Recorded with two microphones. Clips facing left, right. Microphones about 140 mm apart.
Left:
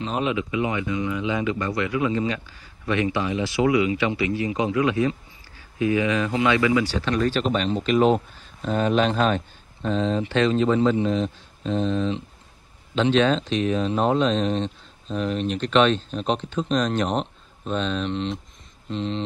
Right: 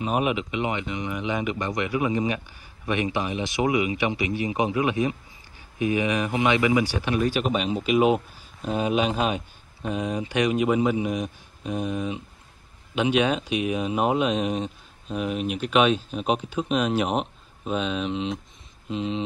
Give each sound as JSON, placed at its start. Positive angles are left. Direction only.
{"t": 0.0, "sound": "speech", "side_deg": -15}